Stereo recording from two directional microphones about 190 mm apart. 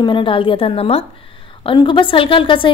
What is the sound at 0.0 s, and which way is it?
A woman's voice, 25° left (ahead or behind).